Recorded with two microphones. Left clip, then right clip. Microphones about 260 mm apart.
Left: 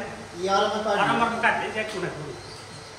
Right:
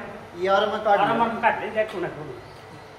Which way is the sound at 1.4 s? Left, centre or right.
Centre.